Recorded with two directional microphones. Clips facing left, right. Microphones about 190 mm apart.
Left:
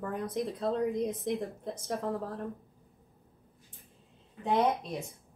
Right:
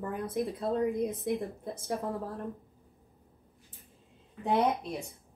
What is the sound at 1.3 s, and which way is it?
Speech, 10° right (ahead or behind).